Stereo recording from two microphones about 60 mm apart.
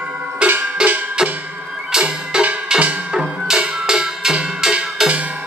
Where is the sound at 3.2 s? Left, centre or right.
Centre.